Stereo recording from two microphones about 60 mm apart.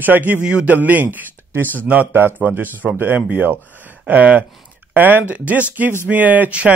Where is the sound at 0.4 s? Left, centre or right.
Centre.